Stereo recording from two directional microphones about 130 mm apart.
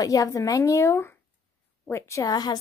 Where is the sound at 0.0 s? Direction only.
25° left (ahead or behind).